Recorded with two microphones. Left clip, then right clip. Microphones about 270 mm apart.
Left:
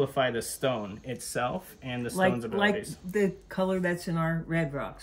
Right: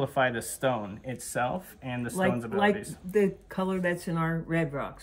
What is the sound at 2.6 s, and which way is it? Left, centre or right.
Speech, centre.